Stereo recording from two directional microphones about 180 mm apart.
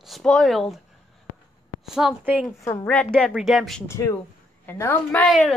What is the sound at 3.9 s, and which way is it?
A woman's voice, 15° left (ahead or behind).